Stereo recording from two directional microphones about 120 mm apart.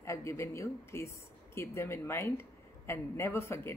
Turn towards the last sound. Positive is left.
turn(degrees=20)  # may be behind; listen again after turning